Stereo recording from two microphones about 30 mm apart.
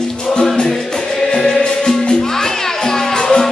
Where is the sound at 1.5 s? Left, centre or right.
Left.